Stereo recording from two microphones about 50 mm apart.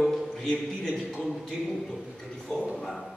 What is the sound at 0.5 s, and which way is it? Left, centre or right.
Speech, centre.